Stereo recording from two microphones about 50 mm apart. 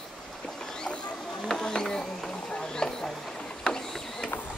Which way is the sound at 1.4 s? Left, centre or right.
Centre.